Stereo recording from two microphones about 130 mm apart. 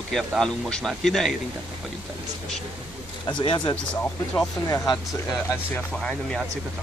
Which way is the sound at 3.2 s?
35° left (ahead or behind).